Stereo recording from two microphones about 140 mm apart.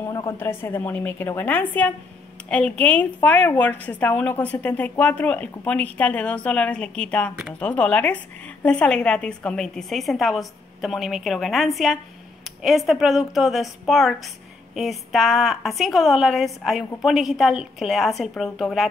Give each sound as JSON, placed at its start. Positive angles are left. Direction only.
{"t": 0.1, "sound": "a woman's voice", "side_deg": 20}